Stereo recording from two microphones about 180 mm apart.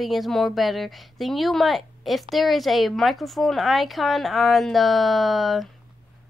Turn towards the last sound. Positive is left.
turn(degrees=0)  # may be behind; listen again after turning